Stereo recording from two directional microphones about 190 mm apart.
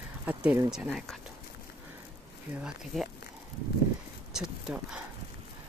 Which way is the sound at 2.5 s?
5° right (ahead or behind).